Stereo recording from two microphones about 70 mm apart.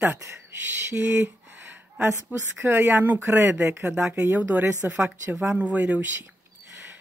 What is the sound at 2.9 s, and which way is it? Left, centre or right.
Speech, right.